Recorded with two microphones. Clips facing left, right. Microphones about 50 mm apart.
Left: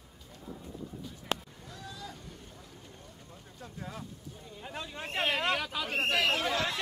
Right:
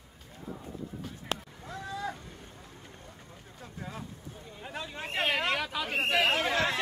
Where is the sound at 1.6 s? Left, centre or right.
Right.